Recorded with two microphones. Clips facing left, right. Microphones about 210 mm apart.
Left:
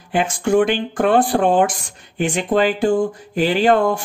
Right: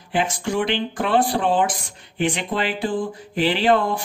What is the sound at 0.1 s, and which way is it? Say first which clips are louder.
Speech: left 6 dB; 50° left (ahead or behind).